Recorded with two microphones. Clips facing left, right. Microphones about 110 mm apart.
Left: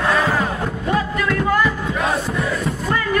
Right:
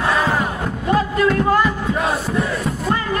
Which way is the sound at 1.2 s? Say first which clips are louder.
Right 3 dB; 30° right (ahead or behind).